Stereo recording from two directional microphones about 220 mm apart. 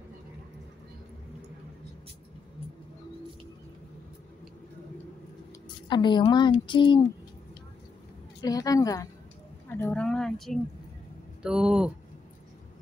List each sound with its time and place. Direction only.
5.9 s a woman's voice: 20° left (ahead or behind)
8.4 s a woman's voice: 15° left (ahead or behind); by 11.9 s 5° right (ahead or behind)